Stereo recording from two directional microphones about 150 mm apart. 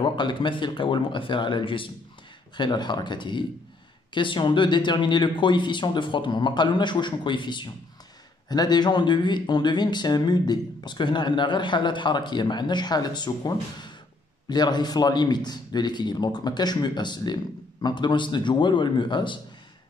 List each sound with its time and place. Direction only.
0.0 s speech: 30° left (ahead or behind)